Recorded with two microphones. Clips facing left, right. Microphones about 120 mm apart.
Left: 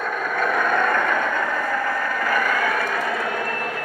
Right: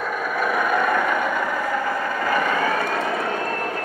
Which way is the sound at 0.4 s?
10° right (ahead or behind).